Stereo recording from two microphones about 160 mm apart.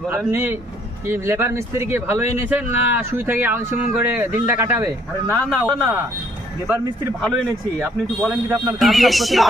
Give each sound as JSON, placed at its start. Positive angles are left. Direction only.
{"t": 0.3, "sound": "speech", "side_deg": -15}
{"t": 5.3, "sound": "a man's voice", "side_deg": 10}
{"t": 8.3, "sound": "speech", "side_deg": -15}
{"t": 8.7, "sound": "speech", "side_deg": 0}